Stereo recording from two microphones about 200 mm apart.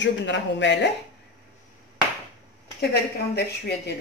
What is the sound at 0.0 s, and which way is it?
Speech, 65° left (ahead or behind).